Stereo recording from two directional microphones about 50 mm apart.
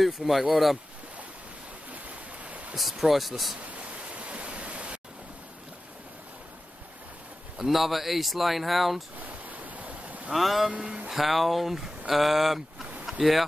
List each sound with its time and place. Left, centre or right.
0.0 s speech: centre
2.7 s speech: centre
4.1 s pink noise: right
7.5 s speech: centre
9.2 s waves: right
10.3 s speech: centre
10.7 s speech: right
11.1 s speech: centre